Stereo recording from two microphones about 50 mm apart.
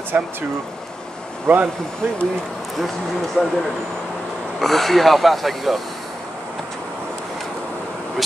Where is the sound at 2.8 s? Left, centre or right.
Centre.